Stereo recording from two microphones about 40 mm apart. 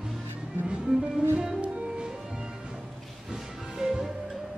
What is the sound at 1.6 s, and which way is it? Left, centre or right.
Music, right.